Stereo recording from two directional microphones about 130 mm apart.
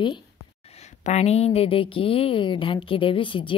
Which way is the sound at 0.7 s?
60° left (ahead or behind).